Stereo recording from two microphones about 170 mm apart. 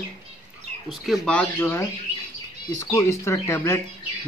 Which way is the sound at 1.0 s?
Centre (ahead or behind).